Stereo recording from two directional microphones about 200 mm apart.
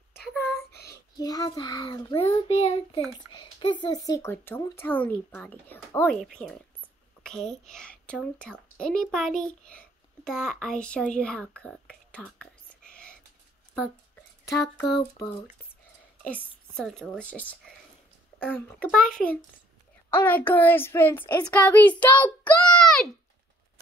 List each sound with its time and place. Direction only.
0.2 s a child's voice: 5° left (ahead or behind)
0.7 s child singing: 55° left (ahead or behind)
1.1 s a child's voice: 20° left (ahead or behind)
2.2 s child singing: 30° left (ahead or behind)
3.3 s speech: 25° left (ahead or behind); by 13.2 s 5° left (ahead or behind)
16.3 s speech: 5° left (ahead or behind)